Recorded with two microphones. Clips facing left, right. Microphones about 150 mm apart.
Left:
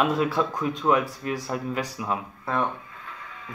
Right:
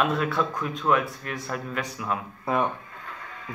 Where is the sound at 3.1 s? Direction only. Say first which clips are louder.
Right 2 dB; 45° right (ahead or behind).